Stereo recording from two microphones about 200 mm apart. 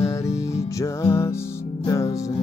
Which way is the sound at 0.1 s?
15° left (ahead or behind).